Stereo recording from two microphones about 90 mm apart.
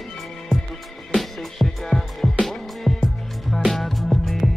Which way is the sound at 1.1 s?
Centre (ahead or behind).